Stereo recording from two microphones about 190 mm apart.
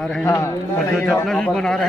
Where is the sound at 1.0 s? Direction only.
5° left (ahead or behind).